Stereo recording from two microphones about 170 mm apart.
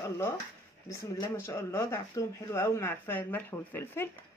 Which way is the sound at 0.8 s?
20° left (ahead or behind).